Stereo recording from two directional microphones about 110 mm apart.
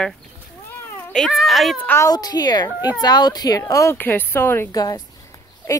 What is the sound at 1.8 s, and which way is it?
Speech, 20° left (ahead or behind).